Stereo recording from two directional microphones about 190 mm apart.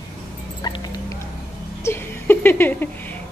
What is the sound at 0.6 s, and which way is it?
Dog, 20° left (ahead or behind).